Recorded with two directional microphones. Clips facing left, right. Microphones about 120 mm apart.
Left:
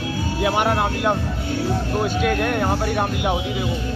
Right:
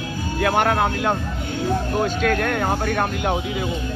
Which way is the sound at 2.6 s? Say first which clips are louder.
Even; 50° right (ahead or behind).